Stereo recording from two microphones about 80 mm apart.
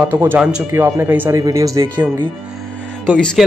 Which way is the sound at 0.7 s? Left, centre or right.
Right.